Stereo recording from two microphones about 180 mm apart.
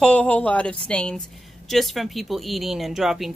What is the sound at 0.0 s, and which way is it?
Speech, 10° left (ahead or behind).